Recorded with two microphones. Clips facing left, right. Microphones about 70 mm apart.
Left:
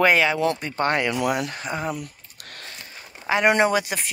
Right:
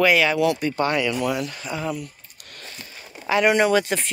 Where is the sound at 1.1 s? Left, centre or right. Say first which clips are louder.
Left 1 dB; left.